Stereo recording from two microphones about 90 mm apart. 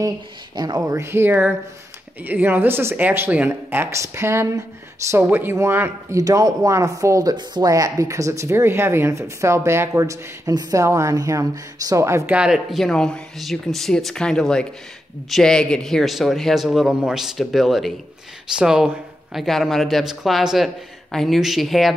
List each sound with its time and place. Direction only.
0.8 s speech: 30° right (ahead or behind)
6.1 s speech: 40° right (ahead or behind)
7.3 s speech: 55° right (ahead or behind)
7.7 s speech: 40° right (ahead or behind)
12.3 s speech: 10° right (ahead or behind)
12.7 s a man's voice: 5° left (ahead or behind)